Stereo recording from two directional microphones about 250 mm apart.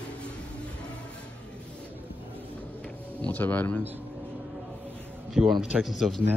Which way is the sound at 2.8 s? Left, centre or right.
Centre.